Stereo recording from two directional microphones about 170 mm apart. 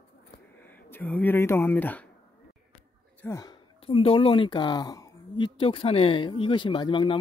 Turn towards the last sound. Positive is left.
turn(degrees=30)  # may be behind; listen again after turning